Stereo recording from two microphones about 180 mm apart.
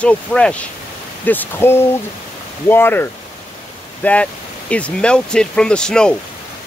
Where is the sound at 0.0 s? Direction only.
5° left (ahead or behind).